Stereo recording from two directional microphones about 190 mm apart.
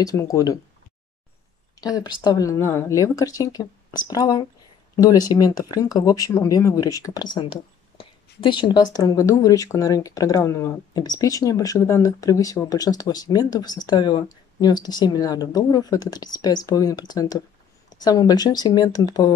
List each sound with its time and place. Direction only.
0.0 s speech: 15° left (ahead or behind)
1.8 s speech: 20° left (ahead or behind)